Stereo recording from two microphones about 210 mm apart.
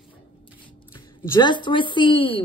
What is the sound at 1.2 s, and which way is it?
A woman's voice, 15° left (ahead or behind).